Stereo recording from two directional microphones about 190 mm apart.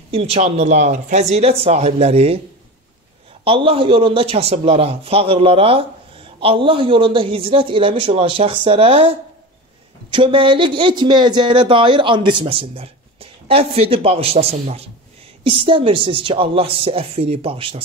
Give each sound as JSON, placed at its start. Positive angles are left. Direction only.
{"t": 0.1, "sound": "speech", "side_deg": -30}
{"t": 3.4, "sound": "a man's voice", "side_deg": -30}
{"t": 10.1, "sound": "a man's voice", "side_deg": -25}